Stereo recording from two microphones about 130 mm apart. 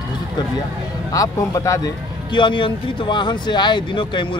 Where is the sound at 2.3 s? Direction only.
40° left (ahead or behind).